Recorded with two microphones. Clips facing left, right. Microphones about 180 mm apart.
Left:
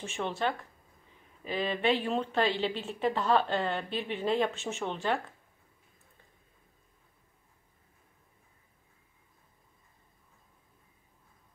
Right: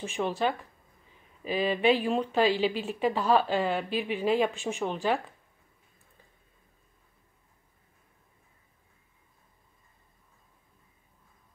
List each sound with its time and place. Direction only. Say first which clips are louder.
0.0 s a woman's voice: right 3 dB; 15° right (ahead or behind)